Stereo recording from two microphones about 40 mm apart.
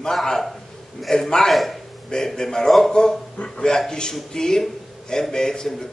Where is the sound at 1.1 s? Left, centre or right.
Centre.